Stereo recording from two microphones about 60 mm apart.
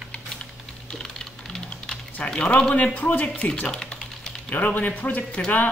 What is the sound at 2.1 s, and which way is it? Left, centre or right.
Speech, centre.